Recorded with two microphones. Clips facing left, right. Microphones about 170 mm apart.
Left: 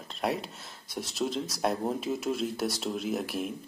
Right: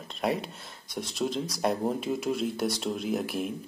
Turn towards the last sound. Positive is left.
turn(degrees=0)  # may be behind; listen again after turning